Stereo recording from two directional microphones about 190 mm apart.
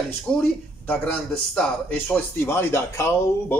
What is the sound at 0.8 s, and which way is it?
A man's voice, 5° left (ahead or behind).